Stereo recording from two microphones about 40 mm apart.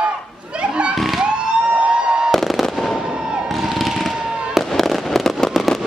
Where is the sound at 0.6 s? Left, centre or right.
Right.